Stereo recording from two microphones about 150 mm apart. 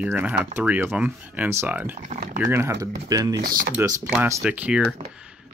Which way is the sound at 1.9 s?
60° right (ahead or behind).